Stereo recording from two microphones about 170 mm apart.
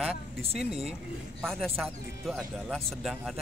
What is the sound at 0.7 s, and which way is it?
Speech, 35° right (ahead or behind).